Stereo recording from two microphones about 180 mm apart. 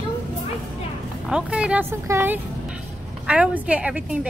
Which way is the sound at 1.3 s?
5° right (ahead or behind).